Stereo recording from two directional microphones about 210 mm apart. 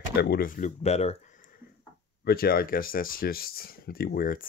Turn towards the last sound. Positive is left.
turn(degrees=40)  # may be behind; listen again after turning